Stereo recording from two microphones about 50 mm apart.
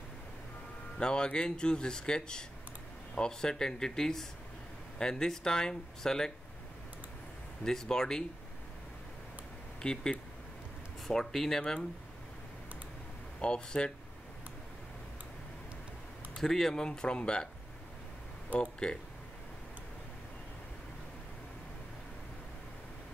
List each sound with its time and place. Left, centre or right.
0.9 s speech: centre
7.6 s speech: centre
9.8 s speech: centre
13.4 s speech: centre
16.3 s speech: centre
18.5 s speech: left